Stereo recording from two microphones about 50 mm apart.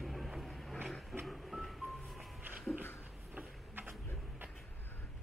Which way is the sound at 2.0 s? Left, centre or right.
Centre.